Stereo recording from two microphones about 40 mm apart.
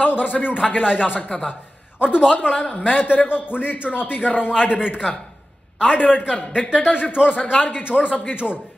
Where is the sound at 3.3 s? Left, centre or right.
Left.